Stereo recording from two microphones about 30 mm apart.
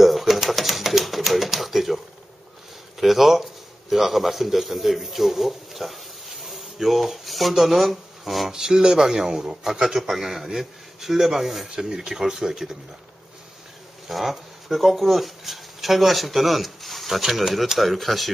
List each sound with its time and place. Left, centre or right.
0.0 s typewriter: centre
3.0 s a man's voice: centre
8.5 s a man's voice: right
14.0 s a man's voice: centre